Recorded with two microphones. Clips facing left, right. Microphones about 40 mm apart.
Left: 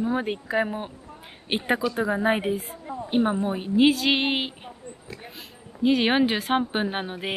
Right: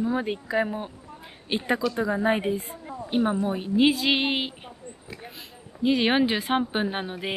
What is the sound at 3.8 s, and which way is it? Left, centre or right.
Speech, centre.